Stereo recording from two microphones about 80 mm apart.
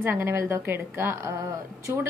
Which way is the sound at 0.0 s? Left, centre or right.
Right.